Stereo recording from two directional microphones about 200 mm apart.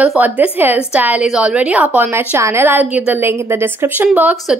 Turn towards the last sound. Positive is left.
turn(degrees=-10)  # may be behind; listen again after turning